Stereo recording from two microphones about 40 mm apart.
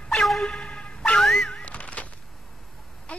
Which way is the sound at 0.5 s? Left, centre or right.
Left.